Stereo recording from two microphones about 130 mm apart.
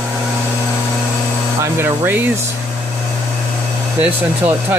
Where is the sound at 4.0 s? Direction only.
15° right (ahead or behind).